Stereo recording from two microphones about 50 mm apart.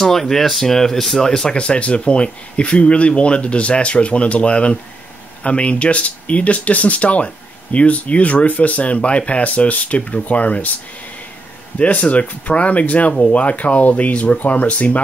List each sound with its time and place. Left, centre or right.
0.0 s speech: centre; by 10.7 s left
11.8 s speech: left